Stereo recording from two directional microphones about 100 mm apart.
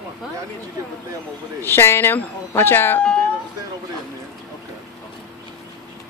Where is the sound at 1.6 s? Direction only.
25° left (ahead or behind).